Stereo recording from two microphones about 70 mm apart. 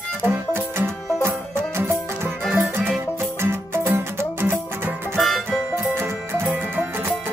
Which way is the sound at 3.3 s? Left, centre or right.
Right.